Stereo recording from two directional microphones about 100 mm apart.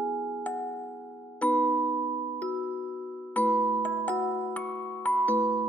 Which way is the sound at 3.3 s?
15° left (ahead or behind).